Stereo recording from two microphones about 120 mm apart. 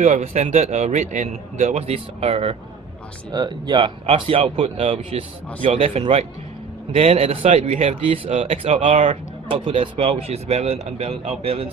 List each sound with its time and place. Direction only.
0.0 s a man's voice: 75° right (ahead or behind); by 2.5 s 55° right (ahead or behind)
3.3 s speech: 35° right (ahead or behind)
4.0 s speech: 55° right (ahead or behind)